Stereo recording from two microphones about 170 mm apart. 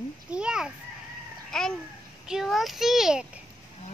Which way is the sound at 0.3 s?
5° right (ahead or behind).